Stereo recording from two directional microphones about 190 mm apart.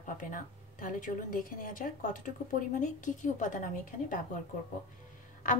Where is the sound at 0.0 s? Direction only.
45° left (ahead or behind).